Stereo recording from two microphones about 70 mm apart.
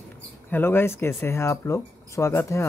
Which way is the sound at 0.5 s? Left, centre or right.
Left.